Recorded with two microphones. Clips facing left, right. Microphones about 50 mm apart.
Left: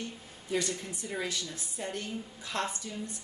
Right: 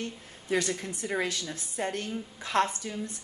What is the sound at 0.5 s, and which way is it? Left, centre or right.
A woman's voice, right.